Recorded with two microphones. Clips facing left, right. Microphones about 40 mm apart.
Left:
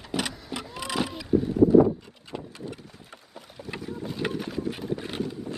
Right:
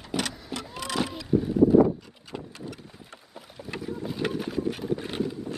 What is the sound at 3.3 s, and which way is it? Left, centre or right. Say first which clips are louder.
Boat: even; centre.